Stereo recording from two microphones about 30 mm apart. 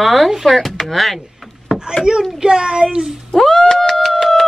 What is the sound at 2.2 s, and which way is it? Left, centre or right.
Speech, centre.